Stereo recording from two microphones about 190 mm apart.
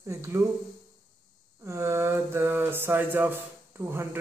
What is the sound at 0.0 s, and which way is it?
Speech, 15° right (ahead or behind).